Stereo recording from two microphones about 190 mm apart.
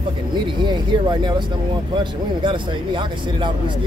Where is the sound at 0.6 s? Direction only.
25° right (ahead or behind).